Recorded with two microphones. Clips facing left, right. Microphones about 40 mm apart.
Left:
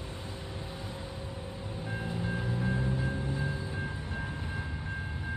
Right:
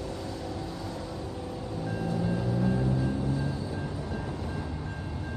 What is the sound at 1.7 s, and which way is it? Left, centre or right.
Music, left.